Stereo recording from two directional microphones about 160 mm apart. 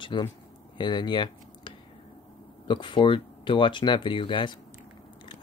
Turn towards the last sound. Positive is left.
turn(degrees=30)  # may be behind; listen again after turning